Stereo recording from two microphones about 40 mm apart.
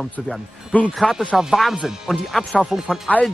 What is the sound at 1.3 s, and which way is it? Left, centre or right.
Speech, centre.